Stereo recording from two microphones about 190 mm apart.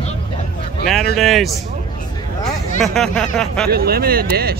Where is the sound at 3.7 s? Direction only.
55° right (ahead or behind).